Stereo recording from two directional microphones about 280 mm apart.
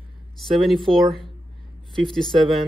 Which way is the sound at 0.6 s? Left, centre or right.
Centre.